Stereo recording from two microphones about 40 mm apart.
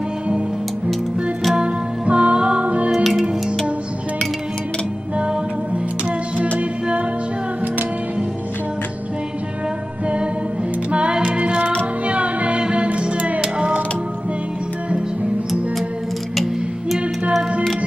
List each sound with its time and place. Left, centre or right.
2.0 s music: right
3.0 s music: centre
5.1 s music: right
10.9 s music: right